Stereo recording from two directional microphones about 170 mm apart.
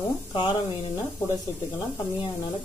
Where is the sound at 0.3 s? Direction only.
30° left (ahead or behind).